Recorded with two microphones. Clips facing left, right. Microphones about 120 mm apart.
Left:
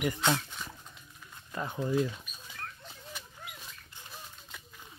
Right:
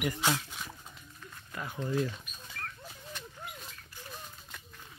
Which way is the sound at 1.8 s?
10° left (ahead or behind).